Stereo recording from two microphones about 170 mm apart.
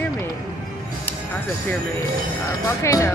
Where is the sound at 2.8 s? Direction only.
20° left (ahead or behind).